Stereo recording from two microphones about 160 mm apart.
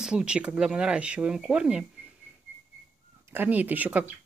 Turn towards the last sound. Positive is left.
turn(degrees=-10)  # may be behind; listen again after turning